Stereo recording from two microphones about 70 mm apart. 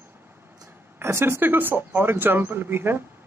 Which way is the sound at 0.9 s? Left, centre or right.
Right.